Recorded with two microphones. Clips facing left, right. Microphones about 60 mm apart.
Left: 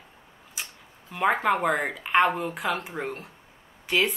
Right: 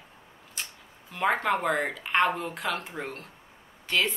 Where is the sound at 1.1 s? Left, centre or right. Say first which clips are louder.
Left 2 dB; centre.